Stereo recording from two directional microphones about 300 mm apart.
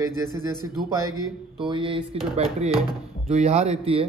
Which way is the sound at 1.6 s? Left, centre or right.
Centre.